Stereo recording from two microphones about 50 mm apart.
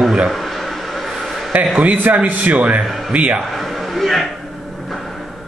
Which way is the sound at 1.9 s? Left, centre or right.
Right.